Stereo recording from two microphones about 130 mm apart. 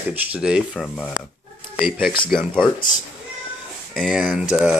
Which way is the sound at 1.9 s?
Centre (ahead or behind).